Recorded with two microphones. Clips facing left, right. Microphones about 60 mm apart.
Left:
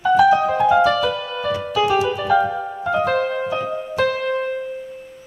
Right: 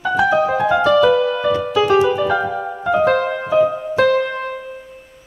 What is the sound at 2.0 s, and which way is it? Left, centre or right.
Music, centre.